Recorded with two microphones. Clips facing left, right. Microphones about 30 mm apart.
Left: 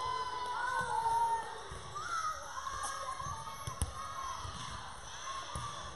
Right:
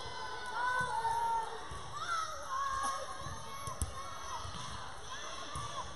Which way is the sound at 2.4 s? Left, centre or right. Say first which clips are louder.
Right 5 dB; centre.